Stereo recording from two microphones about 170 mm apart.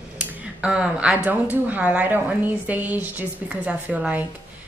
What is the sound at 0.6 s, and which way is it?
A woman's voice, 5° right (ahead or behind).